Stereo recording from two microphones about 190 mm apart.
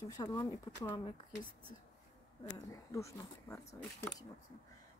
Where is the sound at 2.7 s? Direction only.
15° left (ahead or behind).